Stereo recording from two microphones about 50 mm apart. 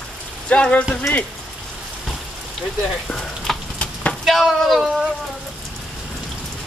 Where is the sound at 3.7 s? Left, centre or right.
Left.